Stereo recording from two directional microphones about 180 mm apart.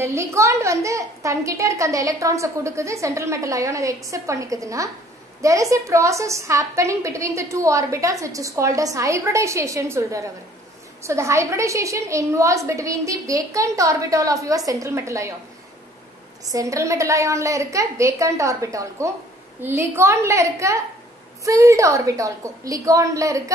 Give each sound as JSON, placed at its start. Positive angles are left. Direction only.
{"t": 0.0, "sound": "a woman's voice", "side_deg": -15}
{"t": 16.4, "sound": "a woman's voice", "side_deg": -20}